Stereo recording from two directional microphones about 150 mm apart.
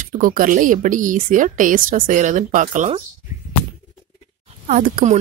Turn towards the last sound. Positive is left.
turn(degrees=-60)  # may be behind; listen again after turning